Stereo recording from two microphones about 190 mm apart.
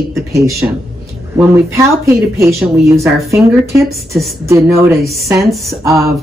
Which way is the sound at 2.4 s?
15° right (ahead or behind).